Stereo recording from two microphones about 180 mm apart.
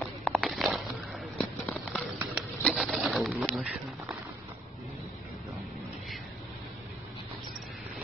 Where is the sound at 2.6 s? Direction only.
5° right (ahead or behind).